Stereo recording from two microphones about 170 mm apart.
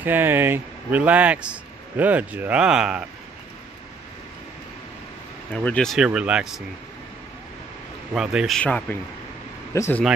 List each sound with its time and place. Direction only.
0.0 s speech: 10° right (ahead or behind)
5.5 s speech: 5° left (ahead or behind)
8.1 s speech: 5° right (ahead or behind); by 10.0 s 15° left (ahead or behind)